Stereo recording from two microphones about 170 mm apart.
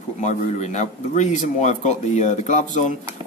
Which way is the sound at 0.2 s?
45° left (ahead or behind).